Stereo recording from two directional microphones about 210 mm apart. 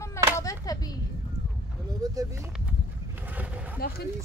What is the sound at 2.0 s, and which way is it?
Speech, 15° right (ahead or behind).